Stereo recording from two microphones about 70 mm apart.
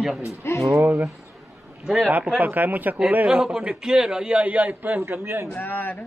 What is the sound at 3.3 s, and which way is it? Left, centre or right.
A man's voice, centre.